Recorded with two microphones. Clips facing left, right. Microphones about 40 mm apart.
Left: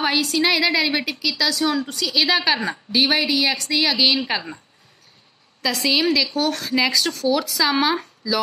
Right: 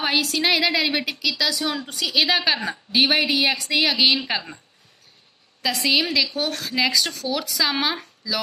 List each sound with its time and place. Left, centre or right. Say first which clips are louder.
0.0 s speech: left 2 dB; centre
2.9 s speech: even; centre
3.8 s speech: left 1 dB; centre
5.6 s speech: left 1 dB; centre